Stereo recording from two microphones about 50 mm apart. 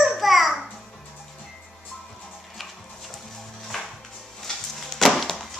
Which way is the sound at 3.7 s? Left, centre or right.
Centre.